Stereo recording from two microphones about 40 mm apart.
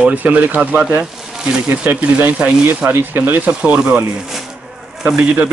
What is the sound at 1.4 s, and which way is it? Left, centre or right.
Speech, right.